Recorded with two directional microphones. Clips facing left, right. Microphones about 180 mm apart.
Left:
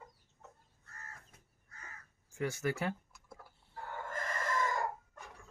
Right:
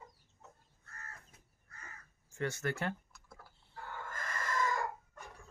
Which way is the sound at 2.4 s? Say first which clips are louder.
Left 1 dB; 10° left (ahead or behind).